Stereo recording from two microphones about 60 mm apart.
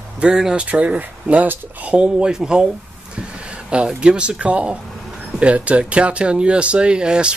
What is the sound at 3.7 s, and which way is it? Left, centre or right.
Speech, centre.